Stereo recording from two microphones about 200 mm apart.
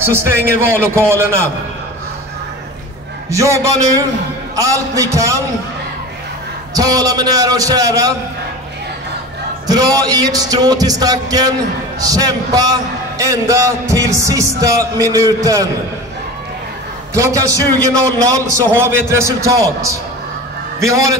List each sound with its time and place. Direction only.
0.0 s speech: 10° right (ahead or behind)
3.3 s speech: 15° right (ahead or behind)
6.7 s speech: 20° right (ahead or behind)
9.7 s speech: 20° right (ahead or behind)
17.1 s speech: 15° right (ahead or behind)